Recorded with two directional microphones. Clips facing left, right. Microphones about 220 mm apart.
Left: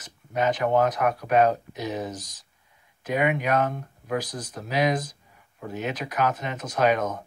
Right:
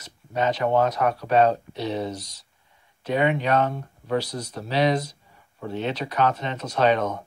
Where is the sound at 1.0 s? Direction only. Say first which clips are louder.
Right 1 dB; 30° right (ahead or behind).